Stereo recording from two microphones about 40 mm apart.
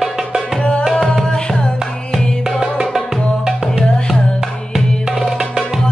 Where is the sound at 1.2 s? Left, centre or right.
Centre.